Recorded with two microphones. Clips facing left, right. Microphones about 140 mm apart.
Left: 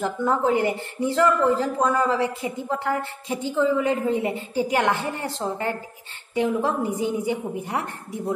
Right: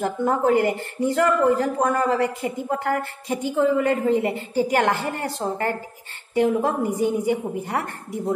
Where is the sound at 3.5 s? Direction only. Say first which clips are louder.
Right 1 dB; 55° right (ahead or behind).